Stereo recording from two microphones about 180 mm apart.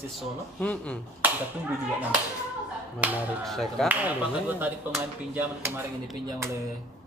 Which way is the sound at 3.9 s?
10° right (ahead or behind).